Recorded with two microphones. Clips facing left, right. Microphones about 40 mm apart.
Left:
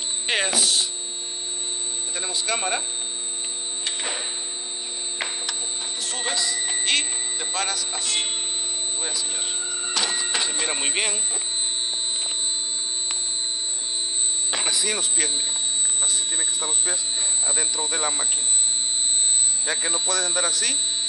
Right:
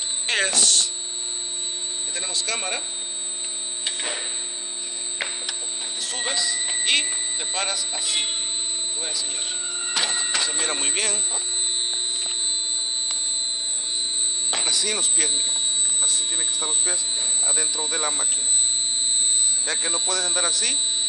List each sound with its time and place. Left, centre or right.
0.3 s speech: centre
2.1 s speech: centre
3.8 s a sound: centre
6.0 s music: centre
10.0 s printer: centre
10.6 s speech: centre
14.5 s speech: centre
16.5 s music: centre
19.6 s music: centre